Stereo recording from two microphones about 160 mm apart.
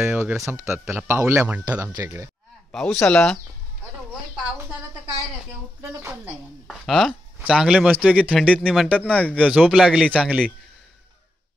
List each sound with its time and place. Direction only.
0.0 s speech: 15° right (ahead or behind)
2.7 s speech: 5° left (ahead or behind)
6.7 s speech: centre (ahead or behind)
8.0 s speech: 5° left (ahead or behind)
8.9 s speech: 10° left (ahead or behind)
9.5 s speech: 5° right (ahead or behind)